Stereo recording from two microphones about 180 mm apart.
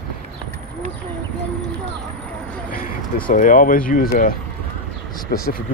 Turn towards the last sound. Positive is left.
turn(degrees=55)  # may be behind; listen again after turning